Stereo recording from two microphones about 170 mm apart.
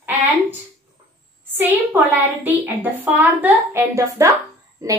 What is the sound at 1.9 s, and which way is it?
A woman's voice, 10° right (ahead or behind).